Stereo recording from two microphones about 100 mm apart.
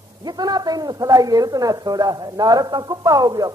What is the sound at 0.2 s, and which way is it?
A woman's voice, 40° right (ahead or behind).